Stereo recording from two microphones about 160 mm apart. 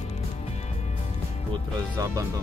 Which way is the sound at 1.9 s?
20° right (ahead or behind).